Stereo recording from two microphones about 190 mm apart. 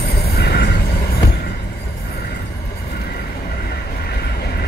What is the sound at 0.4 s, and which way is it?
Train, 60° left (ahead or behind).